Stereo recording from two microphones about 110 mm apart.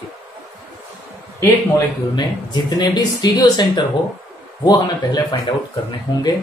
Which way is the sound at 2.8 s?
40° left (ahead or behind).